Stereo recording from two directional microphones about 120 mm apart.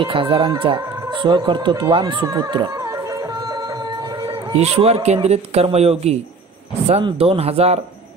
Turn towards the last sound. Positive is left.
turn(degrees=-60)  # may be behind; listen again after turning